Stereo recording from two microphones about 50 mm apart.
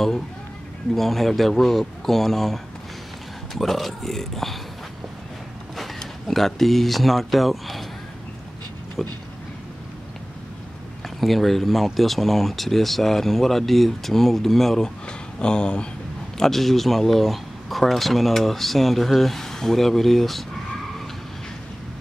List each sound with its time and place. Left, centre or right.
0.9 s speech: centre
5.8 s speech: centre
9.0 s speech: centre
11.1 s speech: centre
15.0 s speech: centre
16.3 s speech: centre